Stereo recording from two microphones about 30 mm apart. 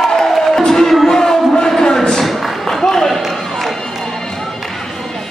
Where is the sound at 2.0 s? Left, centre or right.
Centre.